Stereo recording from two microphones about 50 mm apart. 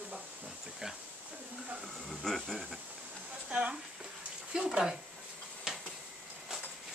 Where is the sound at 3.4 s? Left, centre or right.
Right.